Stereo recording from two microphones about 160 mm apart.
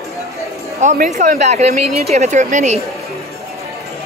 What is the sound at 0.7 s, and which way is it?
Speech, 50° right (ahead or behind).